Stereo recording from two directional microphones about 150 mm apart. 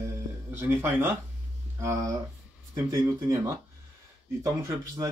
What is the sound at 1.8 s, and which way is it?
Speech, 20° right (ahead or behind).